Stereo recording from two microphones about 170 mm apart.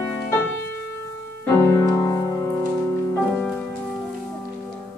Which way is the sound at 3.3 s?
5° left (ahead or behind).